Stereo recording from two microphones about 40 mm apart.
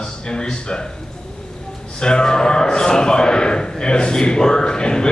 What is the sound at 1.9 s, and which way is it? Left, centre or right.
A man's voice, left.